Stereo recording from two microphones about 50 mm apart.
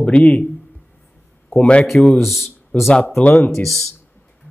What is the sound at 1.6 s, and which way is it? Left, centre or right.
Speech, left.